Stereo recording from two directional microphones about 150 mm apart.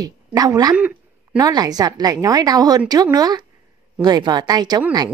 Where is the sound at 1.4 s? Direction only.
25° right (ahead or behind).